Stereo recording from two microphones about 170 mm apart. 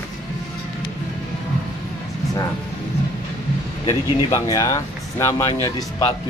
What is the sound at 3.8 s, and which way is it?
Speech, 20° left (ahead or behind).